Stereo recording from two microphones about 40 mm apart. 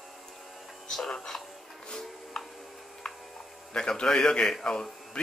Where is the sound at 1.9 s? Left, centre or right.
Centre.